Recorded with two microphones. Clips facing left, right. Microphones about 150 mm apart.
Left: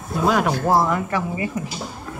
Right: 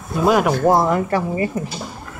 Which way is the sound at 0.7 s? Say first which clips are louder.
Right 2 dB; 25° right (ahead or behind).